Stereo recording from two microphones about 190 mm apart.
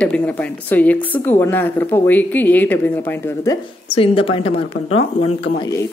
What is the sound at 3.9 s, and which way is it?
Speech, 30° left (ahead or behind).